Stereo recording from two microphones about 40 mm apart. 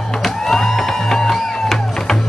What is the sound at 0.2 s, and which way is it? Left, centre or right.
Music, centre.